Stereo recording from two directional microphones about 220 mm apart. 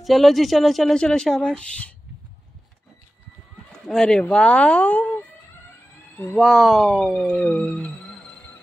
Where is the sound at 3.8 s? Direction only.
5° left (ahead or behind).